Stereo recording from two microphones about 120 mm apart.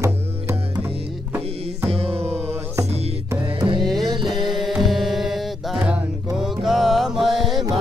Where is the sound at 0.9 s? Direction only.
55° right (ahead or behind).